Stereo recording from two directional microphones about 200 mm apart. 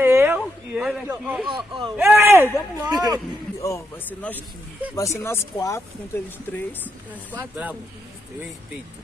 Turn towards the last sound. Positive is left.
turn(degrees=-10)  # may be behind; listen again after turning